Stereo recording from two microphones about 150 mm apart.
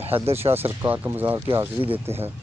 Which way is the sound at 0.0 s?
40° right (ahead or behind).